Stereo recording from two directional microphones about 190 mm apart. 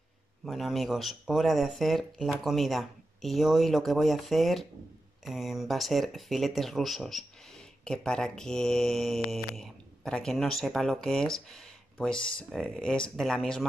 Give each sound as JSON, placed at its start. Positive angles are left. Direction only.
{"t": 0.5, "sound": "speech", "side_deg": 0}